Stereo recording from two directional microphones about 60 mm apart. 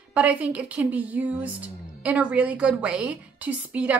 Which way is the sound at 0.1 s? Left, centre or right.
Right.